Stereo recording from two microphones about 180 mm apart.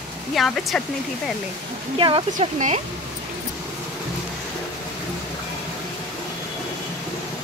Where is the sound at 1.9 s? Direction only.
30° right (ahead or behind).